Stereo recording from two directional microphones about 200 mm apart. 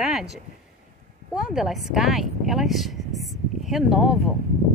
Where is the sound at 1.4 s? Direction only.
Centre (ahead or behind).